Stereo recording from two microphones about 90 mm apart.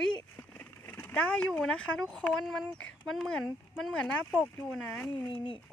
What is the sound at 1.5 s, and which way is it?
Speech, 10° left (ahead or behind).